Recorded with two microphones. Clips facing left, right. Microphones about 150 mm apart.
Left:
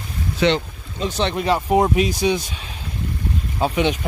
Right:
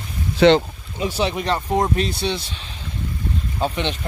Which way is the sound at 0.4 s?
35° right (ahead or behind).